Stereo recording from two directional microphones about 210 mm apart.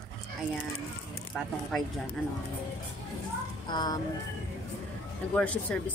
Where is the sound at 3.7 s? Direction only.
20° left (ahead or behind).